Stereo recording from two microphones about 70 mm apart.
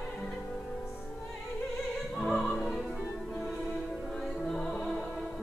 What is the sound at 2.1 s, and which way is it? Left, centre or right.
Opera, centre.